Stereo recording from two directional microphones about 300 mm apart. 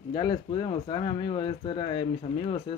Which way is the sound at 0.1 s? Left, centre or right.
Centre.